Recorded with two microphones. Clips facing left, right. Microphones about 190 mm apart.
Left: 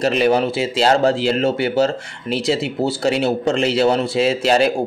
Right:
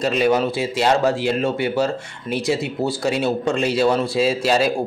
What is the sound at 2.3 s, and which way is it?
Speech, 25° left (ahead or behind).